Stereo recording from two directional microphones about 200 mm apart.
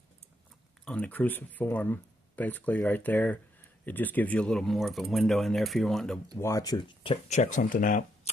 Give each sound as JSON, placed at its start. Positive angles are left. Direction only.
{"t": 0.8, "sound": "speech", "side_deg": 5}
{"t": 6.3, "sound": "speech", "side_deg": 20}